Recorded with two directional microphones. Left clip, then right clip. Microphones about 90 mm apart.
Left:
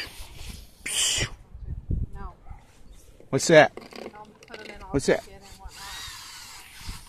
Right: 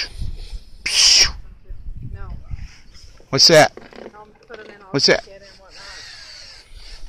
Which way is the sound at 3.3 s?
10° left (ahead or behind).